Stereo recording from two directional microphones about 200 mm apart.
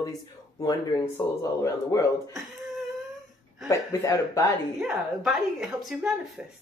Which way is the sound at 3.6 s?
15° left (ahead or behind).